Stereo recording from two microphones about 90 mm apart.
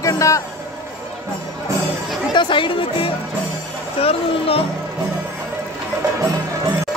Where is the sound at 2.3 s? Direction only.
60° left (ahead or behind).